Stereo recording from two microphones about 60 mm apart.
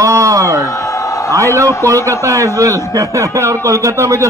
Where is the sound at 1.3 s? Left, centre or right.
Right.